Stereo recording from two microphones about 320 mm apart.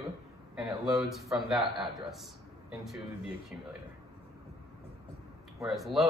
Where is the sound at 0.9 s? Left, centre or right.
Centre.